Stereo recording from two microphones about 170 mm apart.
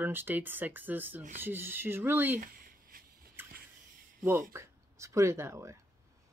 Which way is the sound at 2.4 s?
55° right (ahead or behind).